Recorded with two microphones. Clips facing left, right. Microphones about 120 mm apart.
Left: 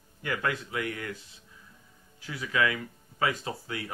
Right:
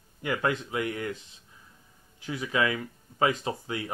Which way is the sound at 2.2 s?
25° right (ahead or behind).